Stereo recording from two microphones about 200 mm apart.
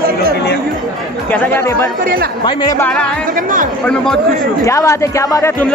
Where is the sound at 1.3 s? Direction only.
10° left (ahead or behind).